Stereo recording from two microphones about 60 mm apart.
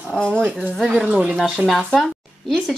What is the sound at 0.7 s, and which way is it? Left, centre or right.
Speech, centre.